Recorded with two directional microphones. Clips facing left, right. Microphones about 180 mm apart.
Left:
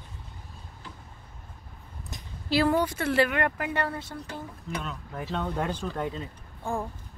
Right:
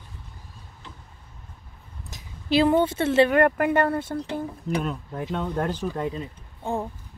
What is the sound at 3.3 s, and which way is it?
Speech, 50° right (ahead or behind).